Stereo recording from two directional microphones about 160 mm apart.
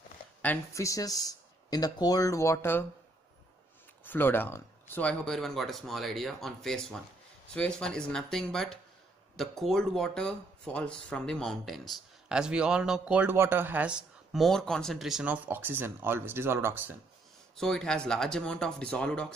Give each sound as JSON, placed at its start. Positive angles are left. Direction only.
{"t": 0.4, "sound": "speech", "side_deg": 15}
{"t": 4.0, "sound": "speech", "side_deg": 10}
{"t": 17.6, "sound": "speech", "side_deg": 5}